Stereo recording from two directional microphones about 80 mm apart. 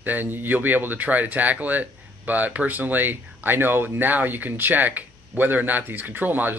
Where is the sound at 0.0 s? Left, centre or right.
Right.